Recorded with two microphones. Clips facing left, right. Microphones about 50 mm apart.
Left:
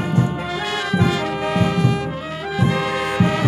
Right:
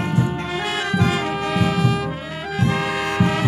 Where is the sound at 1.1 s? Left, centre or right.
Centre.